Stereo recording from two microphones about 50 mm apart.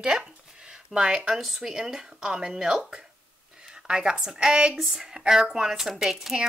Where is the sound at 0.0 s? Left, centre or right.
Centre.